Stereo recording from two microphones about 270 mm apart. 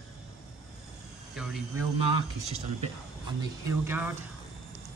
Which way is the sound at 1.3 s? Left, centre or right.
Centre.